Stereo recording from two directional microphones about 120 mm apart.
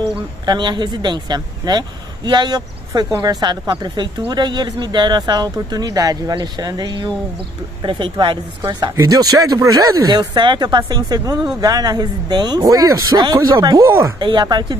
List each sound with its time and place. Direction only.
0.5 s a woman's voice: 40° right (ahead or behind)
8.9 s a woman's voice: 30° right (ahead or behind)